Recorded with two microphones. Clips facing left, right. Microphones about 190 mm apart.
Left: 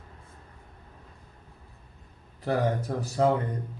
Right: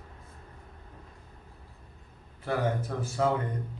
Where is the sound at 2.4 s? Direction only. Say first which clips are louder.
Left 3 dB; 40° left (ahead or behind).